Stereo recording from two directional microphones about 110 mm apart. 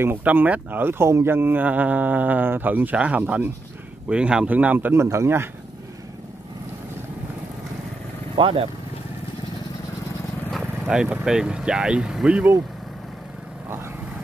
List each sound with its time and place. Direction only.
0.0 s speech: 15° right (ahead or behind)
8.4 s speech: 50° right (ahead or behind)
10.5 s vehicle: 5° right (ahead or behind)
11.2 s speech: 10° right (ahead or behind)